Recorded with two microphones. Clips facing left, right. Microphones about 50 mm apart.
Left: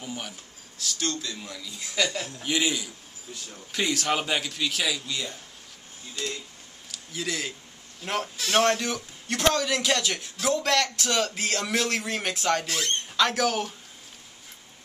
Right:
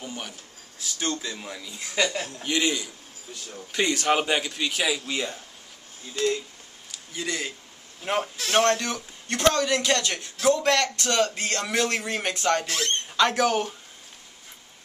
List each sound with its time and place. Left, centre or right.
0.0 s a sound: centre
0.8 s speech: centre
2.4 s a man's voice: centre
3.7 s speech: centre
5.0 s a man's voice: right
7.2 s a man's voice: centre
8.0 s a man's voice: centre